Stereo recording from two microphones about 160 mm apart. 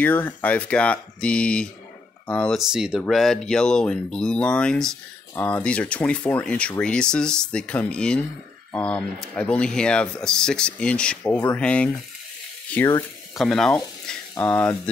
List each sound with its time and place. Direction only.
0.0 s speech: 10° left (ahead or behind)
2.6 s speech: 5° right (ahead or behind); by 13.0 s 15° left (ahead or behind)
13.3 s speech: centre (ahead or behind)